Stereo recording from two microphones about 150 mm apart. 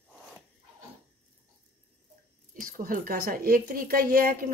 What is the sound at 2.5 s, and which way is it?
A woman's voice, 70° right (ahead or behind).